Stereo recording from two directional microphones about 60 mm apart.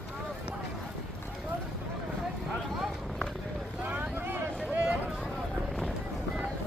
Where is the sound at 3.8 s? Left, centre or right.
Right.